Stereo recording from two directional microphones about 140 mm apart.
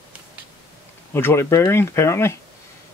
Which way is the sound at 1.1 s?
15° left (ahead or behind).